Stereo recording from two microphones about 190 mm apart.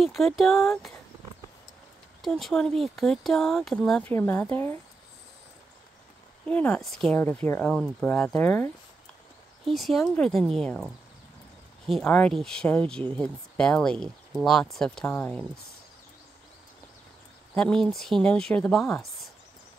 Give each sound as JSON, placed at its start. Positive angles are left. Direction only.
{"t": 0.0, "sound": "speech", "side_deg": 0}
{"t": 2.2, "sound": "speech", "side_deg": 0}
{"t": 6.4, "sound": "speech", "side_deg": 10}
{"t": 11.9, "sound": "speech", "side_deg": 5}
{"t": 17.6, "sound": "speech", "side_deg": 5}